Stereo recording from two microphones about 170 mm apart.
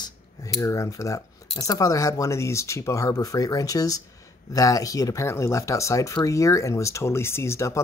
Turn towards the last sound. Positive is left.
turn(degrees=15)  # may be behind; listen again after turning